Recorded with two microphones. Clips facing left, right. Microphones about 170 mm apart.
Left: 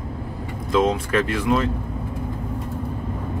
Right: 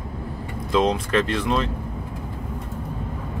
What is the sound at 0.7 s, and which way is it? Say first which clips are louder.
Speech: left 1 dB; 5° left (ahead or behind).